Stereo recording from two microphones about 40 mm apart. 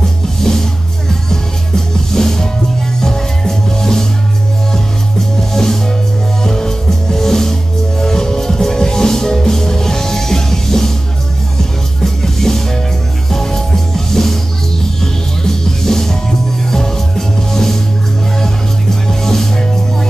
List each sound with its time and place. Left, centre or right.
0.4 s music: centre
5.5 s music: centre
12.0 s music: centre
19.0 s music: centre